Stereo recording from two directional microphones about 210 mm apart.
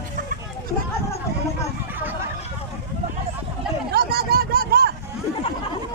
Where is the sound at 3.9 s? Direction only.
50° right (ahead or behind).